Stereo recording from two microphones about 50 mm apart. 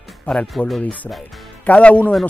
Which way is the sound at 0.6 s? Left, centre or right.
Centre.